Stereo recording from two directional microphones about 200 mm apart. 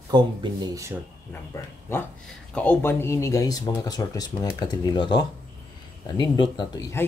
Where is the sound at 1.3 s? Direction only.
10° left (ahead or behind).